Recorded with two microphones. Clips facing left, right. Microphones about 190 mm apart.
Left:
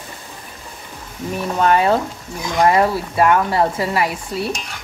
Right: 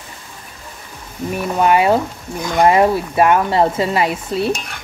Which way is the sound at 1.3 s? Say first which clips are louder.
Right 2 dB; 10° right (ahead or behind).